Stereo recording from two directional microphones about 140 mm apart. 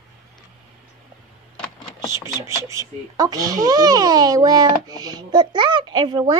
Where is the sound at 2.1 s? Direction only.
20° right (ahead or behind).